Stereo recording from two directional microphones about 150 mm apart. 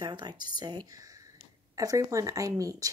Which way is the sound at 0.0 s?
25° right (ahead or behind).